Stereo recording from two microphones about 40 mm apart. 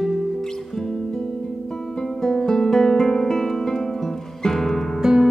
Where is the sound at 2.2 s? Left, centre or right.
Centre.